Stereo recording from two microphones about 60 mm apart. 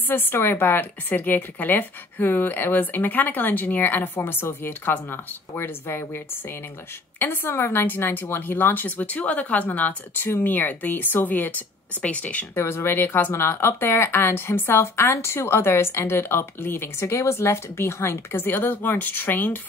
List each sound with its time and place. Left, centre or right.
0.1 s speech: left
12.5 s speech: left